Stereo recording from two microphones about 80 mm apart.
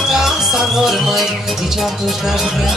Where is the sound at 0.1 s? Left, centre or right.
Centre.